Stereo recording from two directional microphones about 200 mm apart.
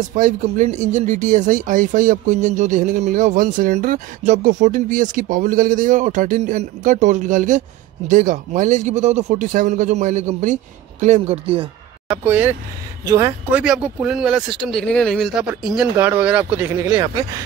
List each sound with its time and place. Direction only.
0.0 s speech: 40° right (ahead or behind)
12.3 s speech: 10° right (ahead or behind)
16.8 s speech: 20° right (ahead or behind)